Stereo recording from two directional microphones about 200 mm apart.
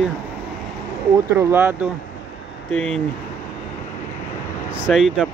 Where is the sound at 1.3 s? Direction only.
10° right (ahead or behind).